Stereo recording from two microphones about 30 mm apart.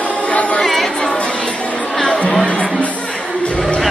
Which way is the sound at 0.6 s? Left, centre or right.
Centre.